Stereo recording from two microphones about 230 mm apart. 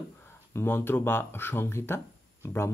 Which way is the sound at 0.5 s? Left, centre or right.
Centre.